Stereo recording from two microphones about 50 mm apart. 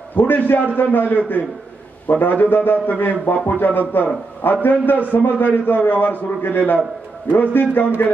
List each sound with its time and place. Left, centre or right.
0.1 s a man's voice: left